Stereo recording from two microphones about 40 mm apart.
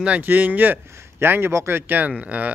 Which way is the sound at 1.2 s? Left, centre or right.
Right.